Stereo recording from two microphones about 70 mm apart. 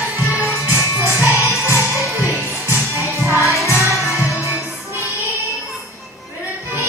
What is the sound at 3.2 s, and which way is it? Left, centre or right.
Music, left.